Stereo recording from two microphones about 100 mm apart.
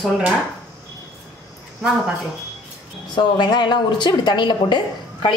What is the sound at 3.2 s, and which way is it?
A woman's voice, 50° left (ahead or behind).